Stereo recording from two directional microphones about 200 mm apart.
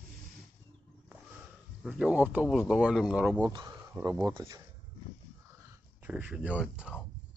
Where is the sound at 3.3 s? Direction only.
20° right (ahead or behind).